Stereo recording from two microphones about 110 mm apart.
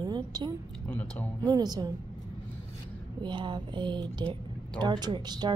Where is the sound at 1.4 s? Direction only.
35° right (ahead or behind).